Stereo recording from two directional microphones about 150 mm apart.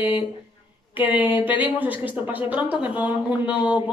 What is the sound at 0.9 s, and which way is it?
Speech, 10° right (ahead or behind).